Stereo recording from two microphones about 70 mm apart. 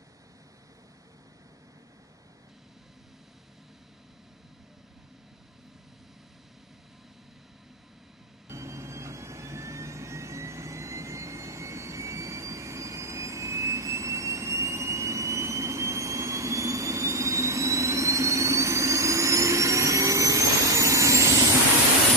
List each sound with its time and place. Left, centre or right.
8.5 s vehicle: right